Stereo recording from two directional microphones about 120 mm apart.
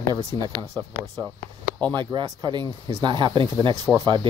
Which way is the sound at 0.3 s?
40° right (ahead or behind).